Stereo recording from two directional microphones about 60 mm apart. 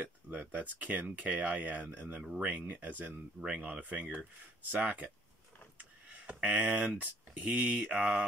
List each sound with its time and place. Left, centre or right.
0.3 s speech: right
6.1 s a sound: right
6.6 s speech: centre